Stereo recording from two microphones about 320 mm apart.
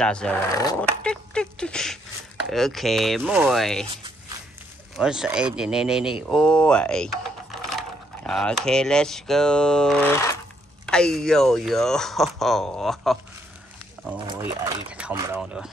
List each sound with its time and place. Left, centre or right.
0.0 s speech: centre
4.9 s speech: centre
14.1 s speech: centre